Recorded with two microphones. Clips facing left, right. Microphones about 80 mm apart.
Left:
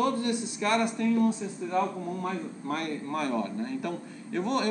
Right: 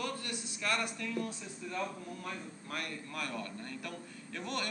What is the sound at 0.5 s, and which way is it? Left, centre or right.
A man's voice, left.